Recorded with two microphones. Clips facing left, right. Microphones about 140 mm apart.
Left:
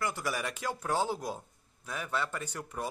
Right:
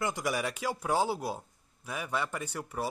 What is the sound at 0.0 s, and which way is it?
Speech, 15° right (ahead or behind).